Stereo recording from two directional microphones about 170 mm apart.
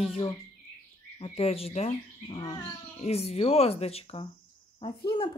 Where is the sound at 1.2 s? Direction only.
35° left (ahead or behind).